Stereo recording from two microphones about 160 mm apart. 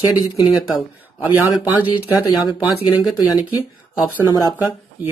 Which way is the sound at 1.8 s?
30° left (ahead or behind).